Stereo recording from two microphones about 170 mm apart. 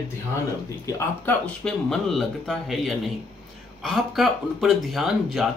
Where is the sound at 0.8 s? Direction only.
15° left (ahead or behind).